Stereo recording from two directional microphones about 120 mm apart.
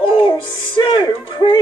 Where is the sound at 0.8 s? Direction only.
40° left (ahead or behind).